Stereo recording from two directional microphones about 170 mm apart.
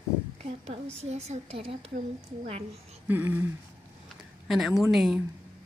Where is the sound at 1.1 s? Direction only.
40° right (ahead or behind).